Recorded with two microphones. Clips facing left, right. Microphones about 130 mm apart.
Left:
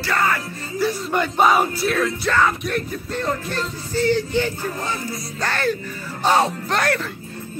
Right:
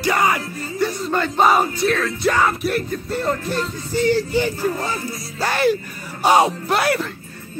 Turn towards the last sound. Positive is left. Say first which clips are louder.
# right 2 dB
turn(degrees=-10)  # may be behind; listen again after turning